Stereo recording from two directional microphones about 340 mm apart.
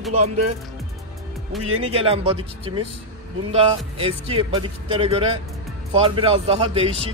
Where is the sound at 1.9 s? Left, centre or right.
Centre.